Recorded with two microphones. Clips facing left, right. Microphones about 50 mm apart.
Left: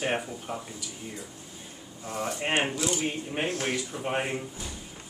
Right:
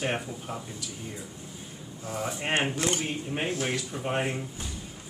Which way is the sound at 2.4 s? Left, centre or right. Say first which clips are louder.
Even; centre.